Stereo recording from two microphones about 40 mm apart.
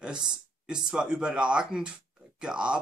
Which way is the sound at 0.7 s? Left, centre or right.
Centre.